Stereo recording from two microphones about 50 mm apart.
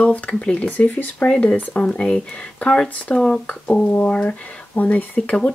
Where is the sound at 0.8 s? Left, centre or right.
Left.